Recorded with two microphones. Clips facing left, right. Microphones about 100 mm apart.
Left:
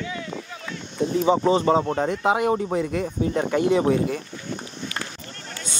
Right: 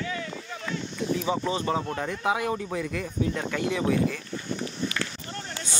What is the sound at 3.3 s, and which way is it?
Speech, 25° left (ahead or behind).